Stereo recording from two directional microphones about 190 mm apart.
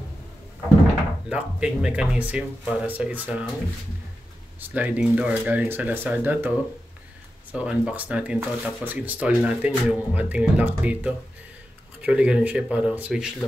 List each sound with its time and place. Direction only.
1.3 s speech: 5° right (ahead or behind)
4.6 s speech: 10° right (ahead or behind)
7.5 s speech: 5° right (ahead or behind)